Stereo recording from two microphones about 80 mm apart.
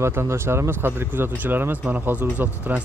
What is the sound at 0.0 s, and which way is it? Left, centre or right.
Speech, right.